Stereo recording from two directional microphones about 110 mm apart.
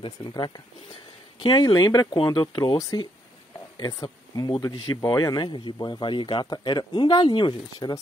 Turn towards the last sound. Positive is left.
turn(degrees=45)  # may be behind; listen again after turning